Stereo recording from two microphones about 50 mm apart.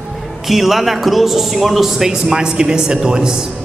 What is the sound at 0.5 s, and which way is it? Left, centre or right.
A man's voice, centre.